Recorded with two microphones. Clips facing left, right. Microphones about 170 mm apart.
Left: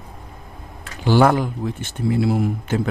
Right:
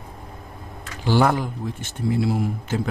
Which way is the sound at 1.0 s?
65° left (ahead or behind).